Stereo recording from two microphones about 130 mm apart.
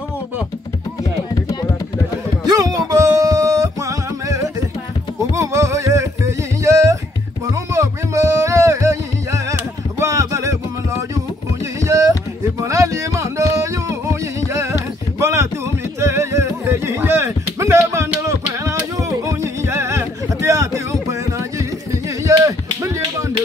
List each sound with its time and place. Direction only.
2.4 s music: 30° right (ahead or behind)
11.8 s a sound: 25° right (ahead or behind)
12.5 s music: 25° right (ahead or behind)